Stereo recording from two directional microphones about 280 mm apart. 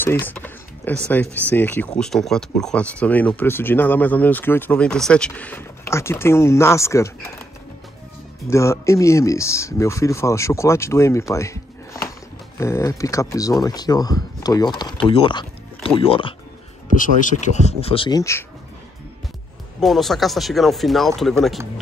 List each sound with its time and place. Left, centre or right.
0.0 s speech: centre
8.5 s speech: centre
19.8 s speech: centre